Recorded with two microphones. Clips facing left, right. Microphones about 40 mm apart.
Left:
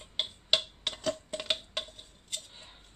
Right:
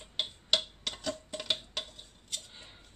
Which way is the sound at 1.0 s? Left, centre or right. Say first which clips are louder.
Left 5 dB; centre.